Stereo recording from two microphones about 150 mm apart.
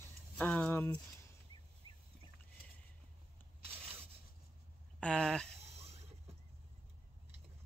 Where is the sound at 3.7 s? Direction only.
40° right (ahead or behind).